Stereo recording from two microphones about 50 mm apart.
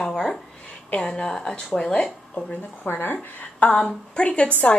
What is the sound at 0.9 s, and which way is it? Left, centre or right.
Speech, centre.